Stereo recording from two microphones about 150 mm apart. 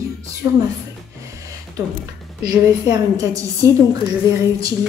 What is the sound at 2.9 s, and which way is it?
Speech, 20° right (ahead or behind).